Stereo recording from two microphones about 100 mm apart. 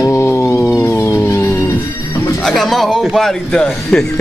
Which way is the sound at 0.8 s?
25° left (ahead or behind).